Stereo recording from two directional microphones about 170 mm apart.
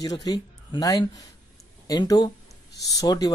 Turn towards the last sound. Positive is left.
turn(degrees=25)  # may be behind; listen again after turning